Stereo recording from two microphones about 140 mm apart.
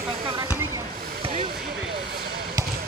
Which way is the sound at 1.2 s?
45° right (ahead or behind).